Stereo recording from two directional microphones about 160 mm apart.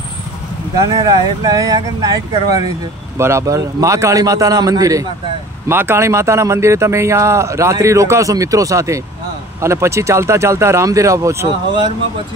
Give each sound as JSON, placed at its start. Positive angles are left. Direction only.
{"t": 0.8, "sound": "a man's voice", "side_deg": -25}